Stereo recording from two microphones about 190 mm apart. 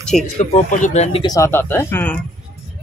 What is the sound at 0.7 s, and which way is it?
Speech, 40° left (ahead or behind).